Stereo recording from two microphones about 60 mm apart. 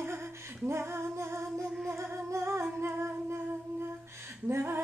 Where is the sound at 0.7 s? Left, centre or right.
Right.